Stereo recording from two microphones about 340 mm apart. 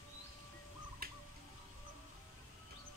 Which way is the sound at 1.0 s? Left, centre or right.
Right.